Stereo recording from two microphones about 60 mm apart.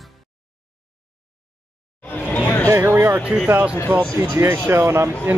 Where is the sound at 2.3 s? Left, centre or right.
Left.